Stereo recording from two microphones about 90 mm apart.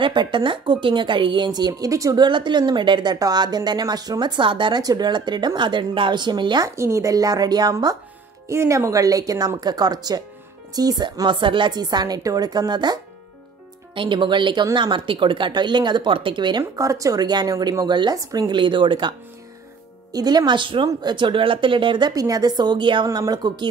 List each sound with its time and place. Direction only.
0.0 s a woman's voice: 60° right (ahead or behind); by 2.1 s 40° right (ahead or behind)
2.1 s a woman's voice: 60° right (ahead or behind)
6.6 s a woman's voice: 35° right (ahead or behind); by 13.0 s 50° right (ahead or behind)
13.9 s a woman's voice: 65° right (ahead or behind)
16.7 s a woman's voice: 35° right (ahead or behind); by 18.1 s 55° right (ahead or behind)
18.1 s speech: 40° right (ahead or behind)
18.5 s a woman's voice: 60° right (ahead or behind)
20.1 s a woman's voice: 45° right (ahead or behind)
23.1 s a woman's voice: 50° right (ahead or behind)